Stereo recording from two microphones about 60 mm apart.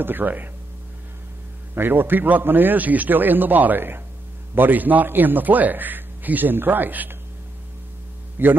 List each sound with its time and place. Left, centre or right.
0.0 s a man's voice: right
1.8 s a man's voice: right
8.4 s a man's voice: right